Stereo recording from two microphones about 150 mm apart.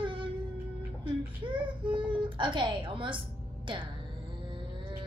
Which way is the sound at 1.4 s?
35° right (ahead or behind).